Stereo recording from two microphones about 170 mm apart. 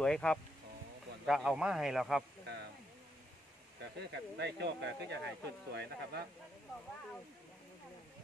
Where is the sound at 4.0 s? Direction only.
80° right.